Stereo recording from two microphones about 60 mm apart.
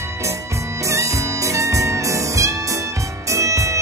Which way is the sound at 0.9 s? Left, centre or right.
Right.